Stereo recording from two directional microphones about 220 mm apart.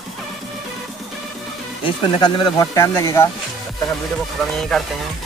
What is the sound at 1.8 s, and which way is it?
Speech, 20° left (ahead or behind).